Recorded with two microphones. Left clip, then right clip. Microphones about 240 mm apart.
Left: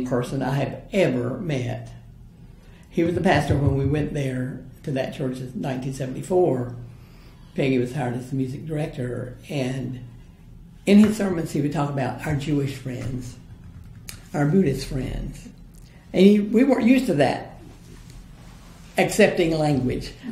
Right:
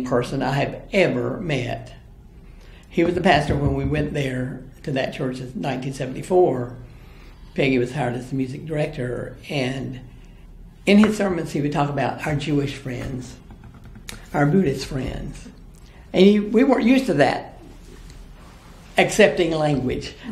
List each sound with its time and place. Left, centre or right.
0.0 s speech: left
2.9 s speech: left
11.1 s speech: left
18.9 s speech: left